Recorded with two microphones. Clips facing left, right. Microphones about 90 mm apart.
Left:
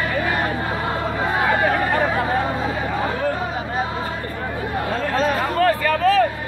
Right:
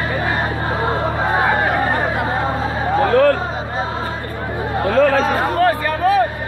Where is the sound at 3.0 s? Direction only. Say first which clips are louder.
Right 12 dB; 80° right.